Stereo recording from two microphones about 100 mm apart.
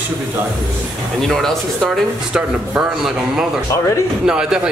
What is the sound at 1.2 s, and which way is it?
Speech, 5° left (ahead or behind).